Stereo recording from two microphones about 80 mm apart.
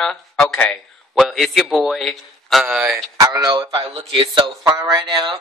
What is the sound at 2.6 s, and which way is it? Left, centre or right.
Speech, centre.